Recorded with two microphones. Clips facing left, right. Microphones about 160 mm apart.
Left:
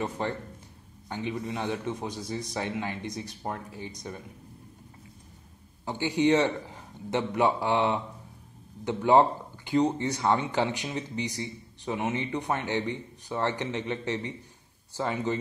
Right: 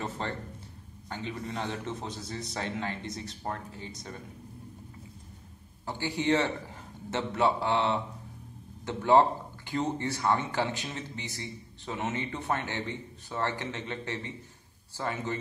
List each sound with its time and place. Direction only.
0.2 s a man's voice: 10° left (ahead or behind)
5.9 s speech: 15° left (ahead or behind)